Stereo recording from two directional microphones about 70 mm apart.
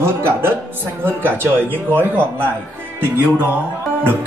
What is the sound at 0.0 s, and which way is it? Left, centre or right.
Speech, right.